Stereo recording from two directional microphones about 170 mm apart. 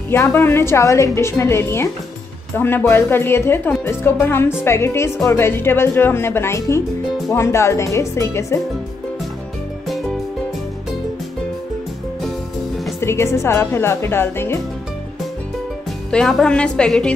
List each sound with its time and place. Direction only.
0.1 s a woman's voice: 15° left (ahead or behind)
13.0 s a woman's voice: 15° left (ahead or behind)
16.1 s a woman's voice: 5° left (ahead or behind)